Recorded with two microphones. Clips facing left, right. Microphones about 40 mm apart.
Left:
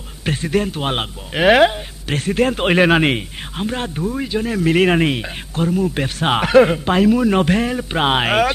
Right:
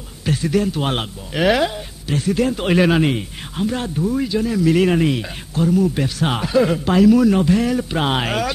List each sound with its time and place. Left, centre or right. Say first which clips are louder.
0.2 s speech: even; left
0.7 s speech: even; centre
2.0 s speech: left 1 dB; left
3.2 s speech: right 1 dB; left
4.0 s speech: right 3 dB; left
4.5 s speech: left 2 dB; left